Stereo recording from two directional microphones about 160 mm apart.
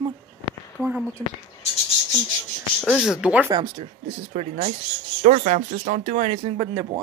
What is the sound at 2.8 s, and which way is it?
Speech, centre (ahead or behind).